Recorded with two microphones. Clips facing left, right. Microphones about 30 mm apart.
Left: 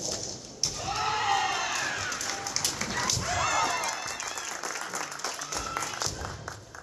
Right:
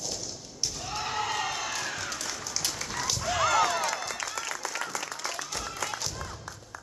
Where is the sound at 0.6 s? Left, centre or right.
Centre.